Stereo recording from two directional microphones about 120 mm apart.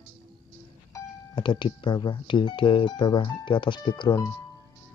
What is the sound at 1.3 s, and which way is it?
Speech, 45° left (ahead or behind).